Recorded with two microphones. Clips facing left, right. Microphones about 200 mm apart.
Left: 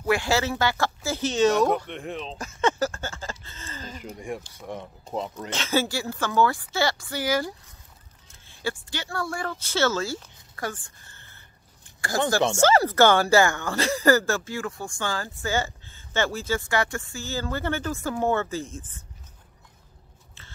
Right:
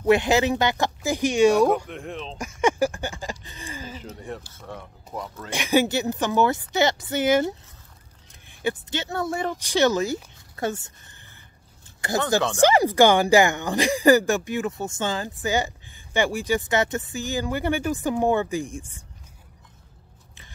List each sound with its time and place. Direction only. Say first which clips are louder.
0.0 s speech: right 5 dB; 20° right (ahead or behind); by 2.3 s centre (ahead or behind)
2.6 s speech: right 3 dB; 15° right (ahead or behind)
4.0 s speech: left 2 dB; 10° left (ahead or behind)
5.5 s a woman's voice: right 5 dB; 15° right (ahead or behind)